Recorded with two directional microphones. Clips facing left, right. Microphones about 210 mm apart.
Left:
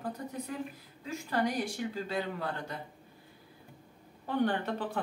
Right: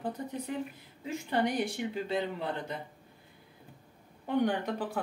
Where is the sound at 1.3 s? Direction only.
25° right (ahead or behind).